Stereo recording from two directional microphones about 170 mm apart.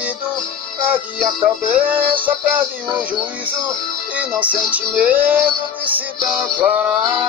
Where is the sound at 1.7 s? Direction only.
10° right (ahead or behind).